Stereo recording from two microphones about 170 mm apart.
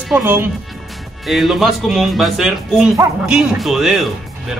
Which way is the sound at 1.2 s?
Centre (ahead or behind).